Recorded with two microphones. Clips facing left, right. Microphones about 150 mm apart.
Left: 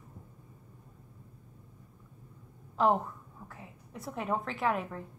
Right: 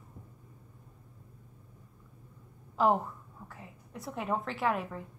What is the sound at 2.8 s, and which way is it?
A woman's voice, 5° right (ahead or behind).